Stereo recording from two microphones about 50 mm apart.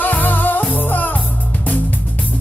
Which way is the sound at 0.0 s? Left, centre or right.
Left.